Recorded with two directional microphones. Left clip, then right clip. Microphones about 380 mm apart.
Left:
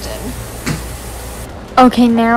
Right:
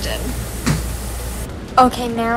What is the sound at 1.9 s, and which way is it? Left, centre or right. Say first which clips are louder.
Speech: left 7 dB; left.